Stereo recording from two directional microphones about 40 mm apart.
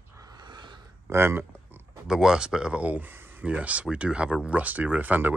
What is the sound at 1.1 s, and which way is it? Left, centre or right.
Speech, right.